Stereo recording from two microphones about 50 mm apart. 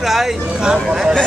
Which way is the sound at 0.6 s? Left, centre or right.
Centre.